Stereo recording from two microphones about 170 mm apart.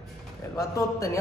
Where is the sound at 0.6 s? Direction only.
20° left (ahead or behind).